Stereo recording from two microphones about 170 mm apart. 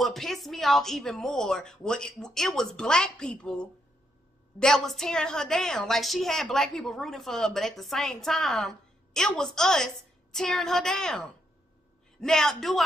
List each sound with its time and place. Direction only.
0.0 s a woman's voice: centre (ahead or behind)